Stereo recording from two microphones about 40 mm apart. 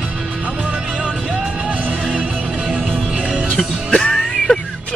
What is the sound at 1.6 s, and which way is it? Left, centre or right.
Music, right.